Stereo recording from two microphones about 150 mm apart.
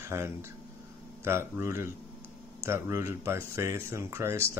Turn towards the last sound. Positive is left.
turn(degrees=-20)  # may be behind; listen again after turning